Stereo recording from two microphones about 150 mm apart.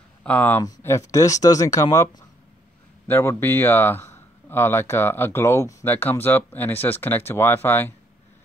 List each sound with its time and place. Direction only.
0.2 s speech: 10° left (ahead or behind)